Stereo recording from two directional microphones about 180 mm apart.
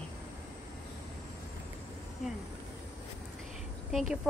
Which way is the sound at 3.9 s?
Centre (ahead or behind).